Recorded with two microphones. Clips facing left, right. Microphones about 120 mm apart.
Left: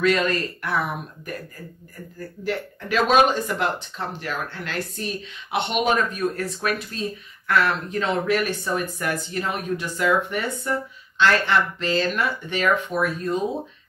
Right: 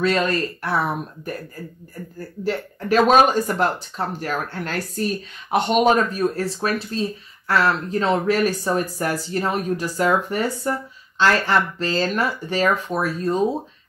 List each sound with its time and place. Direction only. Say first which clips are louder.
0.0 s speech: right 1 dB; 35° right (ahead or behind)